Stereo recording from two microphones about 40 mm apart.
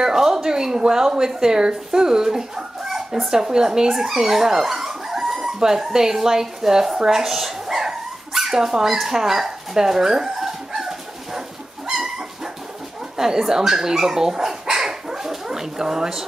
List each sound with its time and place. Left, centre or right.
0.0 s speech: centre
7.0 s dog: centre
13.2 s dog: centre